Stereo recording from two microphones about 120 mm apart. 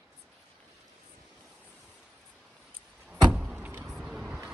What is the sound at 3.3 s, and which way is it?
Vehicle, 5° right (ahead or behind).